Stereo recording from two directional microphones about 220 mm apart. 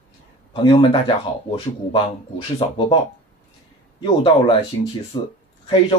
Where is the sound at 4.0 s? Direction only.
20° left (ahead or behind).